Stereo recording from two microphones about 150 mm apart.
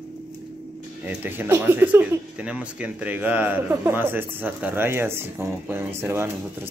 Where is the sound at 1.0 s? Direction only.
15° right (ahead or behind).